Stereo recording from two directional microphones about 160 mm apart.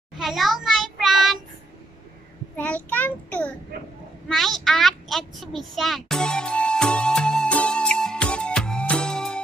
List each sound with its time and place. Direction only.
0.2 s child singing: centre (ahead or behind)
2.5 s child singing: 10° left (ahead or behind)
4.3 s a sound: centre (ahead or behind)